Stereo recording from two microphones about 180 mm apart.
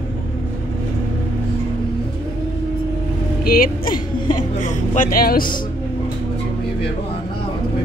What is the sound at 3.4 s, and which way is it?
A woman's voice, 55° left (ahead or behind).